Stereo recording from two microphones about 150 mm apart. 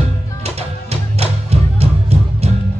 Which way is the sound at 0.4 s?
45° right (ahead or behind).